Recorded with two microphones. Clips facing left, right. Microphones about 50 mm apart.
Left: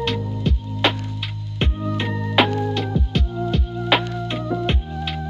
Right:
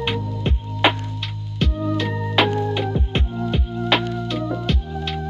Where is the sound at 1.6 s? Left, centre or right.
Left.